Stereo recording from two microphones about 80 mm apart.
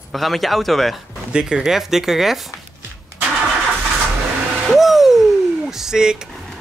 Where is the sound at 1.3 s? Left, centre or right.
Centre.